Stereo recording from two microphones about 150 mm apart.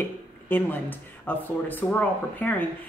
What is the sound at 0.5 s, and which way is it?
Speech, 10° left (ahead or behind).